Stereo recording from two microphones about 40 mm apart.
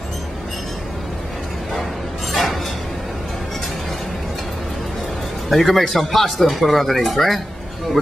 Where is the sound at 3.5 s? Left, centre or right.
Centre.